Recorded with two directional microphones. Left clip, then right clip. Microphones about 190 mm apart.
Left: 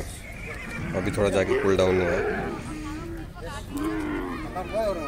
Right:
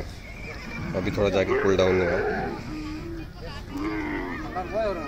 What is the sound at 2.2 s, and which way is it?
Speech, 50° right (ahead or behind).